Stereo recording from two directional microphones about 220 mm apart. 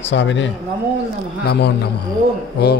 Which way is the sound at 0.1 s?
55° left (ahead or behind).